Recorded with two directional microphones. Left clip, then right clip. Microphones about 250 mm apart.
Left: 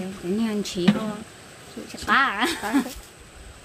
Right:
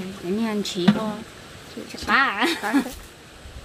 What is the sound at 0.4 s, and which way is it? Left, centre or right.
Speech, left.